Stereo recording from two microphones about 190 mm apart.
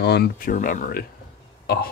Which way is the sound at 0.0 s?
60° left (ahead or behind).